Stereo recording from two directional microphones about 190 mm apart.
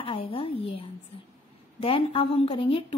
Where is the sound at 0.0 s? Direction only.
30° left (ahead or behind).